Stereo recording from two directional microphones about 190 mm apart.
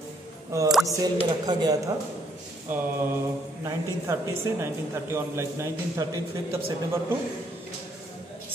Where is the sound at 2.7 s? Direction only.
10° right (ahead or behind).